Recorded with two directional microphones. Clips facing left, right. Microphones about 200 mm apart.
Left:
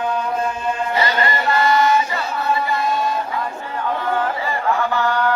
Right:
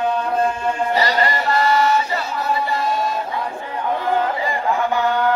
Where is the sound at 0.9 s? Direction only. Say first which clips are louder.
Right 1 dB; 35° right (ahead or behind).